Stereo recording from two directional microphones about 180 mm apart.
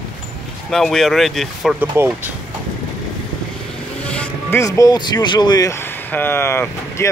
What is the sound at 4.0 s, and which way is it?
Speech, 5° left (ahead or behind).